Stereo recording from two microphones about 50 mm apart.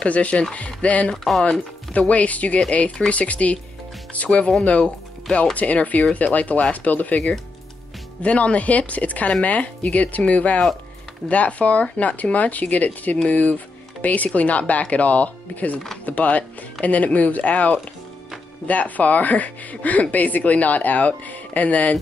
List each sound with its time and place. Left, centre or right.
0.0 s speech: left
1.1 s speech: centre
1.4 s speech: left